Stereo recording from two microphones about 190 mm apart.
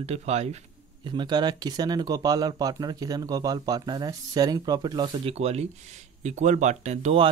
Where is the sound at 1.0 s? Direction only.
25° right (ahead or behind).